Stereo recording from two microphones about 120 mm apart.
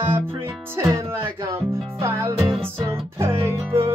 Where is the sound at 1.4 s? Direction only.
20° right (ahead or behind).